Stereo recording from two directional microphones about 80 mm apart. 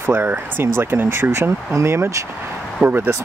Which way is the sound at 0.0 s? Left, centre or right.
Right.